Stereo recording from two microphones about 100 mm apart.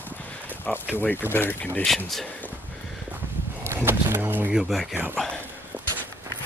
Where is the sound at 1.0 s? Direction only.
20° left (ahead or behind).